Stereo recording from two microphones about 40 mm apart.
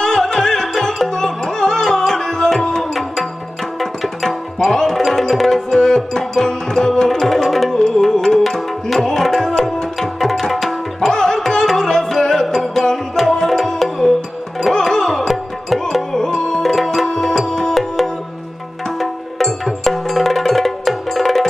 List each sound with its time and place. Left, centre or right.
0.0 s music: centre
2.9 s tabla: centre
5.8 s music: centre
7.7 s tabla: centre
14.6 s music: centre
16.7 s music: centre
18.9 s music: centre